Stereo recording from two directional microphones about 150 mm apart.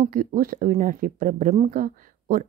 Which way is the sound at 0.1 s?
65° right (ahead or behind).